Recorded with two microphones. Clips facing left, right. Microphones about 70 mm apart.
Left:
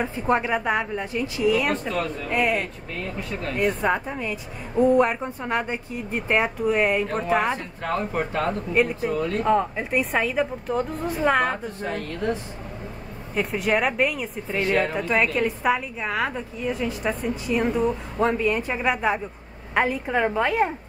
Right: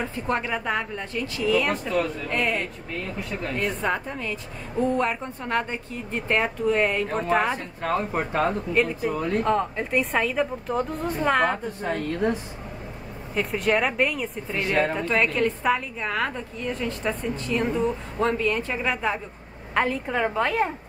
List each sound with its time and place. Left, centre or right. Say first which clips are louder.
0.0 s a woman's voice: left 4 dB; centre
1.7 s a woman's voice: right 1 dB; centre
2.3 s a woman's voice: left 4 dB; centre
7.9 s speech: even; centre
8.7 s a woman's voice: left 3 dB; centre
9.1 s speech: left 1 dB; centre
9.4 s a woman's voice: left 4 dB; centre
13.3 s a woman's voice: even; centre